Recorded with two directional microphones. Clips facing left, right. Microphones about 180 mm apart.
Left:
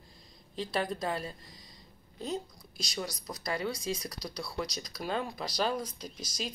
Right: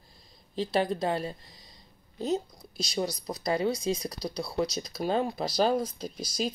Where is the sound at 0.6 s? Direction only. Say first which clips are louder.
Right 6 dB; 30° right (ahead or behind).